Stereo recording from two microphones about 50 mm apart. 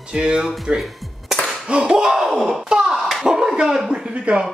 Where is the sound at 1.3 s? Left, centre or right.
Centre.